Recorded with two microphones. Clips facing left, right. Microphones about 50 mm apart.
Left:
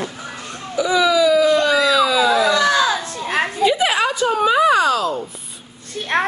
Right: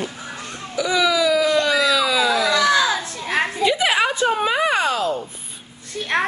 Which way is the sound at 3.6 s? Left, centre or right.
Centre.